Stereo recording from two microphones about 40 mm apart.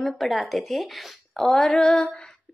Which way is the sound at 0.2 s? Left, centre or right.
Centre.